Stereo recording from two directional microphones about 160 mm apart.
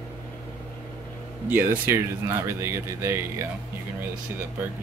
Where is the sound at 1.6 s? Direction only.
15° right (ahead or behind).